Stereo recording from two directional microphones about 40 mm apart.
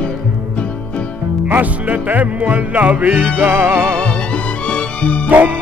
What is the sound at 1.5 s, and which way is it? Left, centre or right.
Music, right.